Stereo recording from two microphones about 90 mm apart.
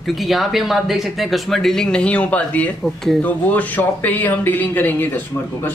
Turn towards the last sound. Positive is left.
turn(degrees=20)  # may be behind; listen again after turning